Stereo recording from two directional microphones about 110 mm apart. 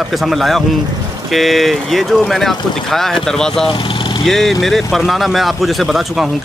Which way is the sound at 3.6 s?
50° left (ahead or behind).